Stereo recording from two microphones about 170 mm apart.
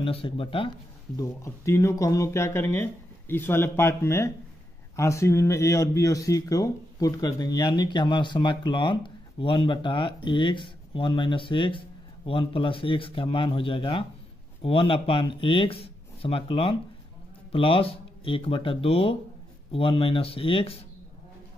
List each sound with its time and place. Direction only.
0.0 s speech: 35° left (ahead or behind)
1.1 s speech: 20° left (ahead or behind); by 20.8 s 35° left (ahead or behind)